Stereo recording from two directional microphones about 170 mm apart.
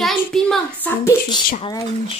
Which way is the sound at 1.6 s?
30° left (ahead or behind).